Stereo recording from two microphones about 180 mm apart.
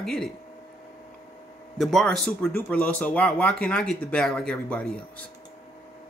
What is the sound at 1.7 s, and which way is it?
Speech, centre (ahead or behind).